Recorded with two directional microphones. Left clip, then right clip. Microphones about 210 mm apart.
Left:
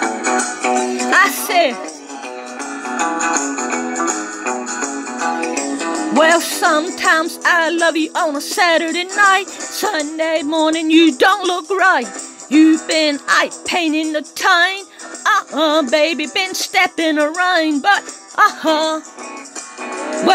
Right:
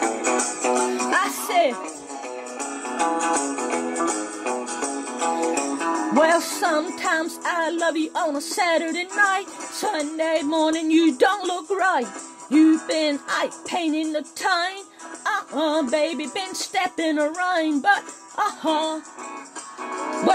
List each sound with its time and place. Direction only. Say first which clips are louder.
0.0 s music: left 5 dB; 25° left (ahead or behind)
2.6 s music: left 4 dB; 25° left (ahead or behind)
6.1 s music: left 6 dB; 5° left (ahead or behind)
6.6 s speech: left 8 dB; 10° left (ahead or behind)
15.2 s music: left 9 dB; 10° left (ahead or behind)
15.9 s speech: left 8 dB; 10° left (ahead or behind)
19.9 s music: left 5 dB; 35° left (ahead or behind)